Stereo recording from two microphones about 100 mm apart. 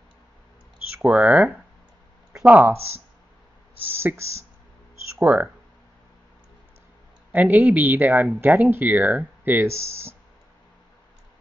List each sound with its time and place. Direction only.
1.0 s speech: 15° right (ahead or behind)
3.9 s speech: 25° right (ahead or behind)
7.3 s speech: 15° right (ahead or behind)